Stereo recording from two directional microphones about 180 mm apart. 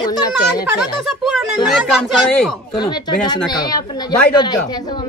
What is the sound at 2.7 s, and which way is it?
A woman's voice, 25° left (ahead or behind).